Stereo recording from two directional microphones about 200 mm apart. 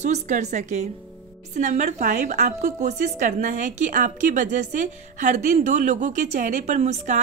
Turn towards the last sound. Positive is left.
turn(degrees=-35)  # may be behind; listen again after turning